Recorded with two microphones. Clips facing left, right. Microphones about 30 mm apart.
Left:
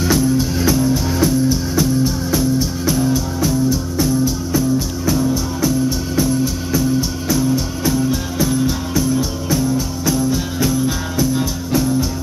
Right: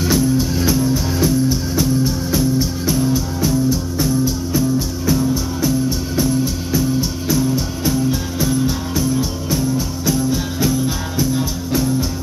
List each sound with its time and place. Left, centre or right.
0.0 s music: centre